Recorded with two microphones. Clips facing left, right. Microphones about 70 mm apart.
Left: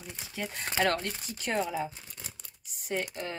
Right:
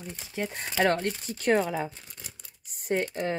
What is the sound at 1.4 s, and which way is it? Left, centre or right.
Speech, right.